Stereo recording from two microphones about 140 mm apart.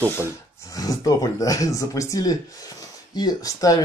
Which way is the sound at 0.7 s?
25° left (ahead or behind).